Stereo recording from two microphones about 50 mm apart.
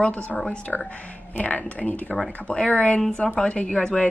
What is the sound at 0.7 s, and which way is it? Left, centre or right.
A woman's voice, left.